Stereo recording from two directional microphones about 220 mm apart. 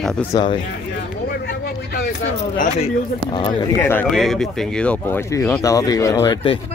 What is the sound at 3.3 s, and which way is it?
Speech, 20° left (ahead or behind).